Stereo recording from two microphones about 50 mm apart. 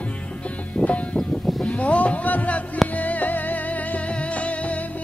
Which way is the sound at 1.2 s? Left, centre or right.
Centre.